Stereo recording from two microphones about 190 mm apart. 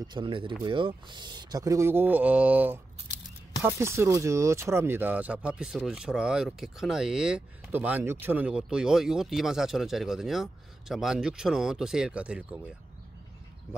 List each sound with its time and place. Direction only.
0.1 s speech: 25° right (ahead or behind); by 12.5 s 5° right (ahead or behind)